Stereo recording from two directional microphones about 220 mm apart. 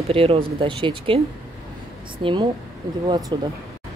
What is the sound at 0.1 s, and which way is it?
Speech, 25° right (ahead or behind).